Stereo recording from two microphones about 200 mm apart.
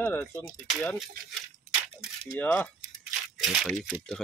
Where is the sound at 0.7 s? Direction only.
Centre (ahead or behind).